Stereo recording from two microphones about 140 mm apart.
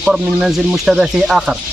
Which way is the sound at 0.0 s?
5° right (ahead or behind).